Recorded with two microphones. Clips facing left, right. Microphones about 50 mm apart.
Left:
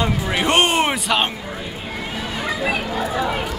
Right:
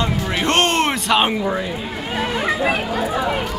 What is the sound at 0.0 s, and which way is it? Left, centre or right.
Music, centre.